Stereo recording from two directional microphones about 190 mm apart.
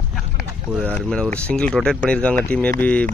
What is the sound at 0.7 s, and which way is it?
Speech, 5° left (ahead or behind).